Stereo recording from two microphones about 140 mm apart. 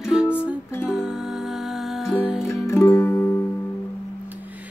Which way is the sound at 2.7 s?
20° left (ahead or behind).